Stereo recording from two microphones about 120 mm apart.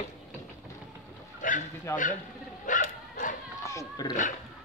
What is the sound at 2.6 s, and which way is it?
Dog, 90° left.